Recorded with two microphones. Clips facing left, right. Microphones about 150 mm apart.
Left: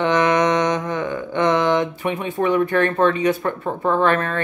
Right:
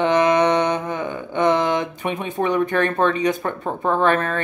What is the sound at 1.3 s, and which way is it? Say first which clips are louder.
A woman's voice: left 1 dB; 15° right (ahead or behind).